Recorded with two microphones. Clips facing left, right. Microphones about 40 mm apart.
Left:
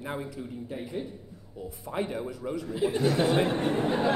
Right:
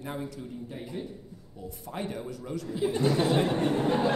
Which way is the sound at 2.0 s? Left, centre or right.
Left.